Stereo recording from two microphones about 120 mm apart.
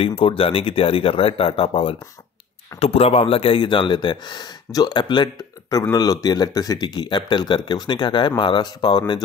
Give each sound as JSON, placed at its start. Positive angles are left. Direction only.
{"t": 0.0, "sound": "speech", "side_deg": 50}